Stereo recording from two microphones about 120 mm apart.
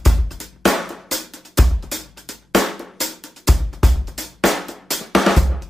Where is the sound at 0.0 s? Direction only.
Centre (ahead or behind).